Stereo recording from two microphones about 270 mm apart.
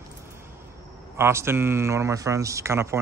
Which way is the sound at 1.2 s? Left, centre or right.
Centre.